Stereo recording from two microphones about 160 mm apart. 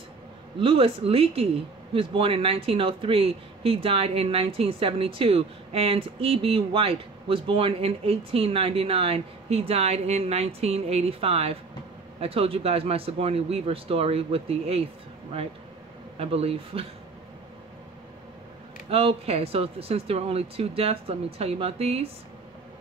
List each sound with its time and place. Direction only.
0.6 s speech: 35° right (ahead or behind)
16.2 s speech: 40° right (ahead or behind)
18.9 s speech: 35° right (ahead or behind)